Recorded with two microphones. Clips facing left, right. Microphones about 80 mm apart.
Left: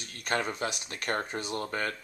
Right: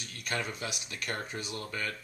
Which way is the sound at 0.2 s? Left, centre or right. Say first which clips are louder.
Left 5 dB; left.